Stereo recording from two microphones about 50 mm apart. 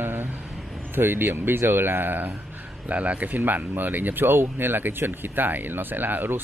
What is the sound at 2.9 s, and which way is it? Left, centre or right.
Speech, right.